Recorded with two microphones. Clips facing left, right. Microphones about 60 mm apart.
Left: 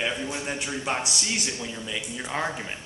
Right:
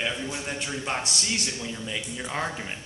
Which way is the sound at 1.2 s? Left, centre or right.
Left.